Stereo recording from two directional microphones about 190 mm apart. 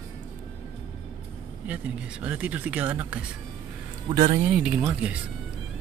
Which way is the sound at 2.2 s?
10° right (ahead or behind).